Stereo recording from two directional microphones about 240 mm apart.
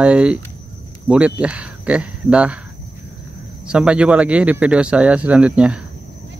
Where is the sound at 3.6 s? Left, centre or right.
Centre.